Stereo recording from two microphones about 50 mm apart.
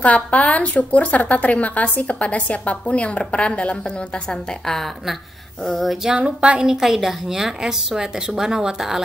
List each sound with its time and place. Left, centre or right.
0.0 s a woman's voice: left
4.3 s a woman's voice: centre
6.1 s speech: right
6.7 s a woman's voice: centre